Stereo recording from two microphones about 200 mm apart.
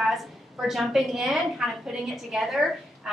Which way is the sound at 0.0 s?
Centre (ahead or behind).